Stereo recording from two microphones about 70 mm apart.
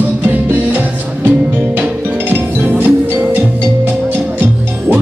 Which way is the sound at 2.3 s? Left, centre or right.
Right.